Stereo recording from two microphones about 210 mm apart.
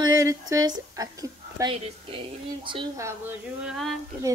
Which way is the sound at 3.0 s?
10° right (ahead or behind).